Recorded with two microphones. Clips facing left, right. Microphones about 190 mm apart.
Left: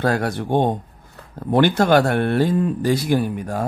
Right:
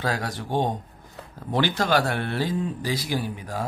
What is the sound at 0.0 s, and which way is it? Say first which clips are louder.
Speech: left 8 dB; 55° left (ahead or behind).